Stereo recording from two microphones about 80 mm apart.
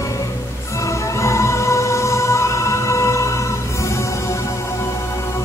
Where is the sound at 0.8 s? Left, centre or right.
Left.